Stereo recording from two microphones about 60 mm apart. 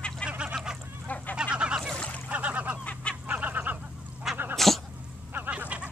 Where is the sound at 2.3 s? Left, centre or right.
Right.